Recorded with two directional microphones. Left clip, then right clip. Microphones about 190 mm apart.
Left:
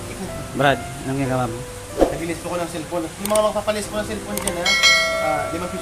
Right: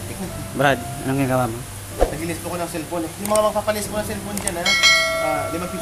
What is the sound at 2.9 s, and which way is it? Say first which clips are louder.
Speech: even; 5° left (ahead or behind).